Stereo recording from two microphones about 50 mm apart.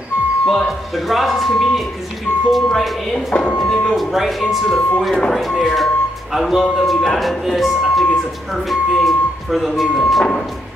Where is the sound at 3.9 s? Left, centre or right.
Centre.